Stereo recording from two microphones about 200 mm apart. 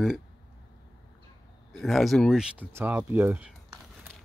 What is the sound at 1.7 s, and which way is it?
Speech, centre (ahead or behind).